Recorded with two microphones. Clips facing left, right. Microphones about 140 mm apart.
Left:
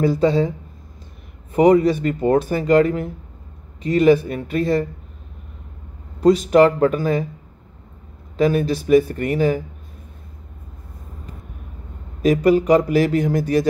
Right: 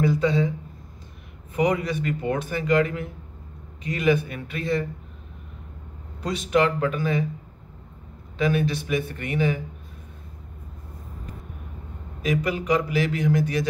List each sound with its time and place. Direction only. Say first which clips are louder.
0.0 s speech: left 5 dB; 35° left (ahead or behind)
1.5 s speech: left 10 dB; 35° left (ahead or behind)
6.2 s speech: left 9 dB; 40° left (ahead or behind)
8.4 s speech: left 6 dB; 40° left (ahead or behind)
12.2 s speech: left 10 dB; 40° left (ahead or behind)